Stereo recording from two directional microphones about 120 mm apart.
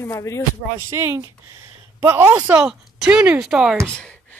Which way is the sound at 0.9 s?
25° right (ahead or behind).